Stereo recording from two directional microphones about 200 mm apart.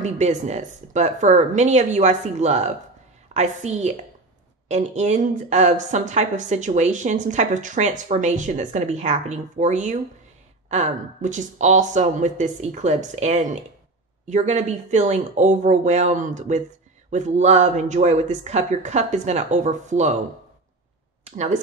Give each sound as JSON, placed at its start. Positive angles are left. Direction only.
{"t": 0.0, "sound": "a woman's voice", "side_deg": -35}